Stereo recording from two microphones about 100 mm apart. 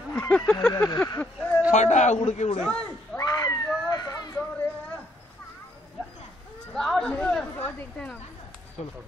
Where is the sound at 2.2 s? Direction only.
90° left.